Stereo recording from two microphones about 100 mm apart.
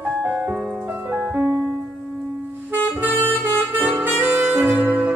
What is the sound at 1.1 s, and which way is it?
Music, 10° right (ahead or behind).